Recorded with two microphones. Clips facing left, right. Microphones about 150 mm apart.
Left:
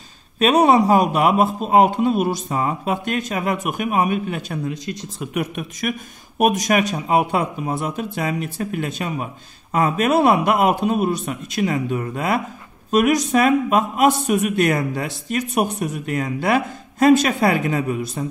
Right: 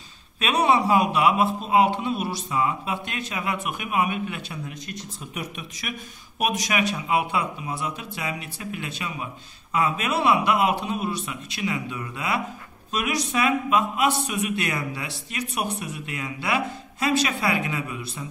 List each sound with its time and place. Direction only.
0.4 s speech: 40° left (ahead or behind)
4.6 s speech: 85° left; by 18.2 s 45° left (ahead or behind)